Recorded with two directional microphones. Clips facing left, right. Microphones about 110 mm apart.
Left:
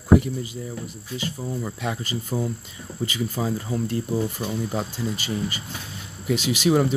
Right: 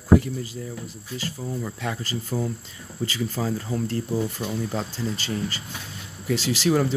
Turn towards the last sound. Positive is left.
turn(degrees=15)  # may be behind; listen again after turning